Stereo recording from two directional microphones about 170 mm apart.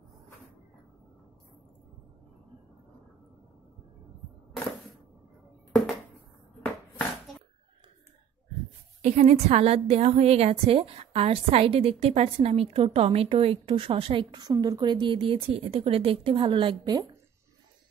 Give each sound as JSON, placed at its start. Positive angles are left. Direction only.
{"t": 9.0, "sound": "a woman's voice", "side_deg": -40}